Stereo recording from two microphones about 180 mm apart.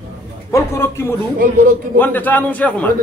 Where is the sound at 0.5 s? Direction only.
15° left (ahead or behind).